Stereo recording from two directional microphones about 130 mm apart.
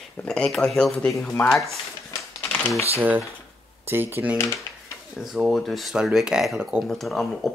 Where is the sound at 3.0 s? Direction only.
15° right (ahead or behind).